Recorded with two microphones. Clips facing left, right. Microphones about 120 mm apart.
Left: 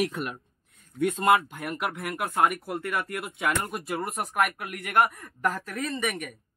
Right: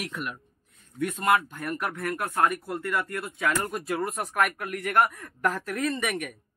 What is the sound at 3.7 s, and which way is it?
Speech, 5° left (ahead or behind).